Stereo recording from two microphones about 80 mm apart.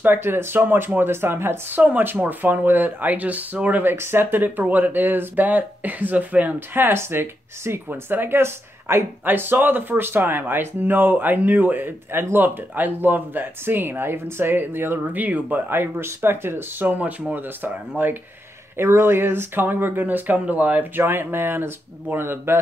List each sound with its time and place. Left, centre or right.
0.0 s speech: right